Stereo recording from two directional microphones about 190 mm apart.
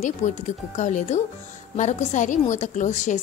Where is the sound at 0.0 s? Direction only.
40° left (ahead or behind).